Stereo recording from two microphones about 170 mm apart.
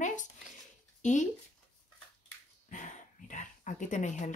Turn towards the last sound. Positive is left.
turn(degrees=45)  # may be behind; listen again after turning